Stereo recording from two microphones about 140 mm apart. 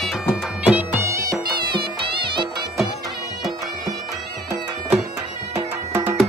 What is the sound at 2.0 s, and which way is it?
Music, 35° right (ahead or behind).